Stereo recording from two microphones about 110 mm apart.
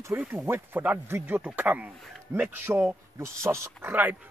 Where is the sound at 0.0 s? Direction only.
15° right (ahead or behind).